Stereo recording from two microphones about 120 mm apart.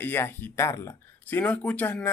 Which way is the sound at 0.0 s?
15° left (ahead or behind).